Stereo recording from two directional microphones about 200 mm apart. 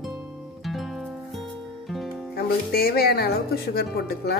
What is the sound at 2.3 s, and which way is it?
A woman's voice, 50° left (ahead or behind).